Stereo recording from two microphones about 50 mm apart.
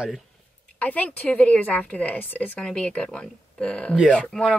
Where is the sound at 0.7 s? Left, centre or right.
Left.